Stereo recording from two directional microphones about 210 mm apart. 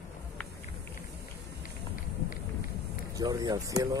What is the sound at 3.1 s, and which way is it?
Speech, 20° right (ahead or behind).